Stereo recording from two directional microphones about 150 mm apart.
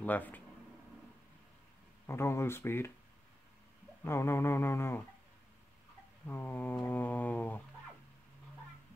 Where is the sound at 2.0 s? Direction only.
15° left (ahead or behind).